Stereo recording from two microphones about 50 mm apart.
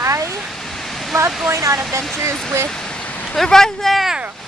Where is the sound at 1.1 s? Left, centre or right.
Right.